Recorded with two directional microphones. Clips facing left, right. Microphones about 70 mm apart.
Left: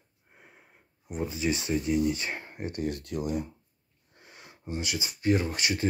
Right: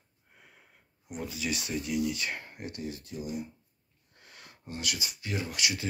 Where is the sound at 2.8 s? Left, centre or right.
Left.